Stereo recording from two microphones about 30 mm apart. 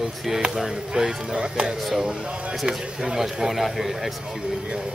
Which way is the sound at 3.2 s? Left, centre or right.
Centre.